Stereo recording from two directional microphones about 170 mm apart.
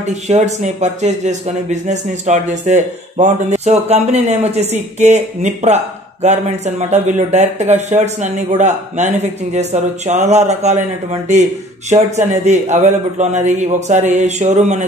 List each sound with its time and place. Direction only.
0.0 s speech: 40° right (ahead or behind)
12.4 s speech: 45° right (ahead or behind)